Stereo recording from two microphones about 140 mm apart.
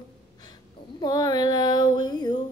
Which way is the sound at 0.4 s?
30° left (ahead or behind).